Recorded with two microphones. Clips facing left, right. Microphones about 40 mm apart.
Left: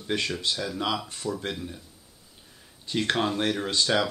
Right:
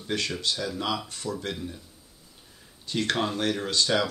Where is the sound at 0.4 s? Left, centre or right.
Centre.